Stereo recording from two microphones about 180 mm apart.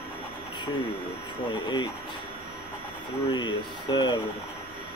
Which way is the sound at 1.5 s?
25° left (ahead or behind).